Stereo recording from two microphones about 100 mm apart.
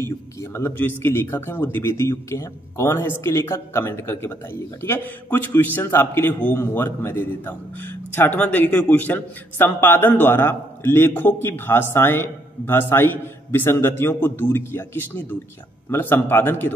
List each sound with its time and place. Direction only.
0.4 s speech: 25° left (ahead or behind)